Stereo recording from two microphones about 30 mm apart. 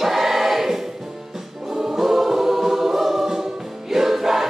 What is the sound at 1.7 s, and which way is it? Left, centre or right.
Choir, right.